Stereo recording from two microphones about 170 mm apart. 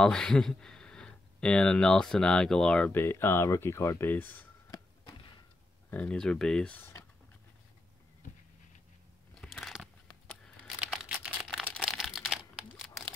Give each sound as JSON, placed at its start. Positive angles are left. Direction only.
{"t": 0.0, "sound": "speech", "side_deg": 5}
{"t": 5.9, "sound": "speech", "side_deg": 10}
{"t": 9.4, "sound": "crunch", "side_deg": 0}
{"t": 10.4, "sound": "a sound", "side_deg": 0}
{"t": 11.8, "sound": "crumpling", "side_deg": 0}